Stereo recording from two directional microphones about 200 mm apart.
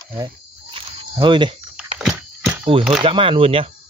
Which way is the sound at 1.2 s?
25° right (ahead or behind).